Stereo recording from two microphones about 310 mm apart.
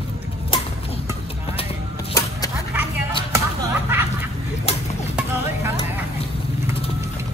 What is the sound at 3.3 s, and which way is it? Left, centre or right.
Whip, centre.